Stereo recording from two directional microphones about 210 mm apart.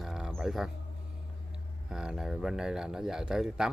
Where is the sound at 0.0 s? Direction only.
Centre (ahead or behind).